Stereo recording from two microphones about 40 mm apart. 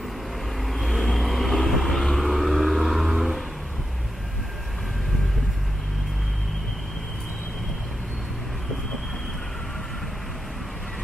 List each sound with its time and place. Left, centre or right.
0.6 s vehicle: centre